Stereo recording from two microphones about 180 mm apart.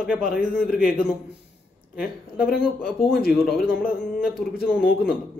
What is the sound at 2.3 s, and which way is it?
Speech, 55° left (ahead or behind).